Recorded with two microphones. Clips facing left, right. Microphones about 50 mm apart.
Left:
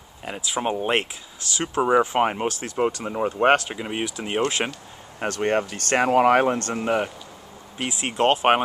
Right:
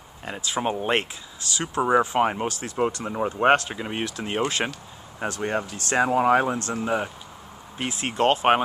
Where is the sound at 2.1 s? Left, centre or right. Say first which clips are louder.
Left 1 dB; left.